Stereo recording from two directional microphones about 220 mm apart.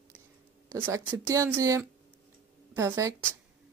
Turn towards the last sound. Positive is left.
turn(degrees=-15)  # may be behind; listen again after turning